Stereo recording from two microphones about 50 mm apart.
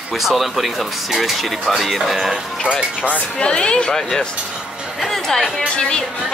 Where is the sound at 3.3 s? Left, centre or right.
Centre.